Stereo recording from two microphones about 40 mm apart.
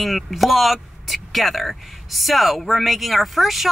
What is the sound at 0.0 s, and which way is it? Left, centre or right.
Speech, centre.